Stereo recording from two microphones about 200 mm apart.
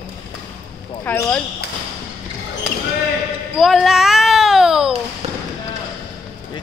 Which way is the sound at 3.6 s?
Centre (ahead or behind).